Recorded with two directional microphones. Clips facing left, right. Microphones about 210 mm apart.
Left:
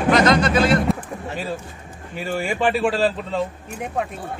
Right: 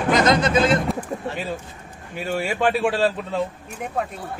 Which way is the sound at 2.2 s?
Centre (ahead or behind).